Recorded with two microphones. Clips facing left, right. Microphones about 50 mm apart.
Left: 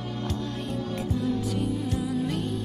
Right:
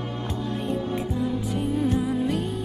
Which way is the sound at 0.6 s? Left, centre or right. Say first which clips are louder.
Right 4 dB; right.